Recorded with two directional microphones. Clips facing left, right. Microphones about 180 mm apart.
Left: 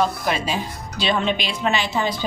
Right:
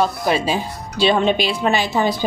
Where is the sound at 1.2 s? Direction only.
35° right (ahead or behind).